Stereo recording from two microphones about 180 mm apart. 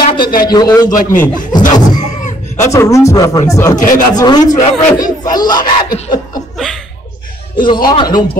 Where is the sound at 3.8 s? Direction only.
50° left (ahead or behind).